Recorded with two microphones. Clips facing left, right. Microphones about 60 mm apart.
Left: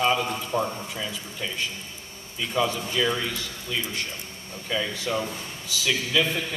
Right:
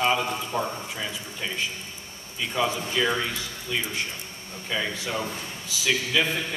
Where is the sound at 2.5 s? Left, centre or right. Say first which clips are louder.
Left 1 dB; centre.